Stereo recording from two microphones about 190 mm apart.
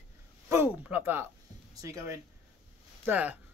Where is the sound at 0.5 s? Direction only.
10° right (ahead or behind).